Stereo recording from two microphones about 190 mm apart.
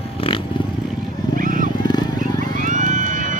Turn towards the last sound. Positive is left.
turn(degrees=-40)  # may be behind; listen again after turning